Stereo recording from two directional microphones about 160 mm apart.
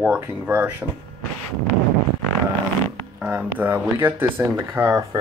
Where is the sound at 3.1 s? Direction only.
10° right (ahead or behind).